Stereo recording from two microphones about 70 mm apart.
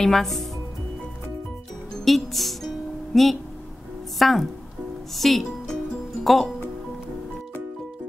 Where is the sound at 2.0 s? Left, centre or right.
Centre.